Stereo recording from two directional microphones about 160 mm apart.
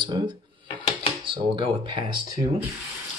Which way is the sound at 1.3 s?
30° right (ahead or behind).